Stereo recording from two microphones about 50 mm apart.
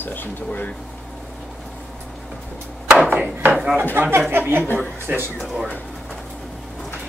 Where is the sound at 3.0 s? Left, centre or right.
Right.